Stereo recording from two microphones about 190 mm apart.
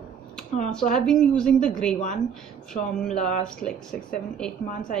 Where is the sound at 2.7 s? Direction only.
30° left (ahead or behind).